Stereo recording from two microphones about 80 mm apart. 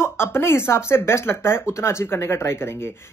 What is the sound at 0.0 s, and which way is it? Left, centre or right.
Speech, left.